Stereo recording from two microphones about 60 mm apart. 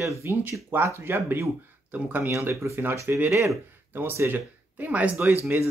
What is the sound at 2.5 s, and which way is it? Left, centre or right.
Speech, right.